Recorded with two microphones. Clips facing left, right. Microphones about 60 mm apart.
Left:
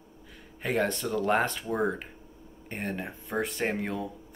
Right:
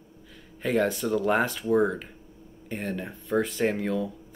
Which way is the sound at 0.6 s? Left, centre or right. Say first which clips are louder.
Right 3 dB; centre.